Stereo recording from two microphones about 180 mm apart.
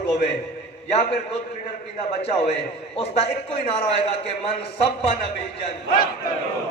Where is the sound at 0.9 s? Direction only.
35° left (ahead or behind).